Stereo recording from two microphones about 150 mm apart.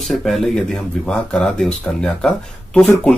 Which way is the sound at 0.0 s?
Centre (ahead or behind).